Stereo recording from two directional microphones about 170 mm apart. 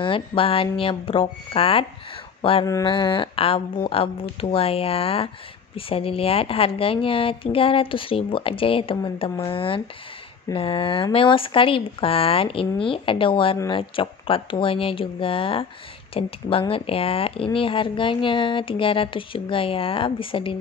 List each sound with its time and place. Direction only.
0.0 s speech: 30° left (ahead or behind)